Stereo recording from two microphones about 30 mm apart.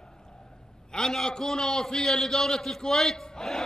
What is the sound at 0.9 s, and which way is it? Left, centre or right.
A man's voice, centre.